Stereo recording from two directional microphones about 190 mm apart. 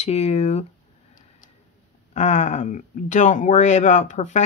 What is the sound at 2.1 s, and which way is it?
Speech, 35° left (ahead or behind).